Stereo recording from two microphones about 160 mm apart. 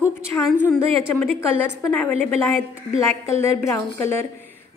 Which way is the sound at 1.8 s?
10° left (ahead or behind).